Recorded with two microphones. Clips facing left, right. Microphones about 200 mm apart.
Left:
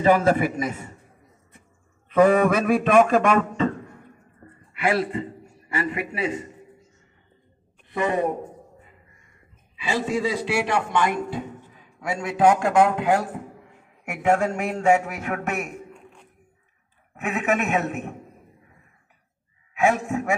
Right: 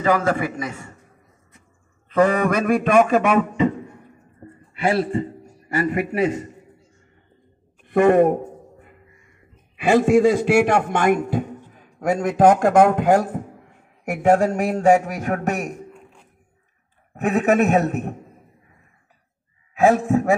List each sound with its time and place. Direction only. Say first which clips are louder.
0.0 s a man's voice: left 1 dB; 25° left (ahead or behind)
2.0 s a man's voice: left 1 dB; 5° left (ahead or behind)
4.4 s a man's voice: right 3 dB; 30° right (ahead or behind); by 6.5 s 45° right (ahead or behind)
7.9 s a woman's voice: right 9 dB; 55° right (ahead or behind)
9.8 s a man's voice: right 10 dB; 50° right (ahead or behind); by 14.7 s 35° right (ahead or behind)
14.8 s a sound: right 3 dB; 35° right (ahead or behind)
15.9 s a sound: right 1 dB; centre (ahead or behind)
17.1 s a sound: right 6 dB; 35° right (ahead or behind)
19.7 s speech: right 6 dB; 35° right (ahead or behind)